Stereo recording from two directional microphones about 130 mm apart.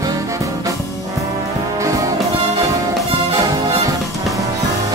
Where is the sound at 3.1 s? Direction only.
25° right (ahead or behind).